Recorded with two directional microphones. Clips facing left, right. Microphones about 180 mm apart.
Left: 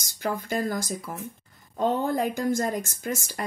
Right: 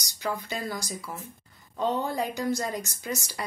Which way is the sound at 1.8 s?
50° left (ahead or behind).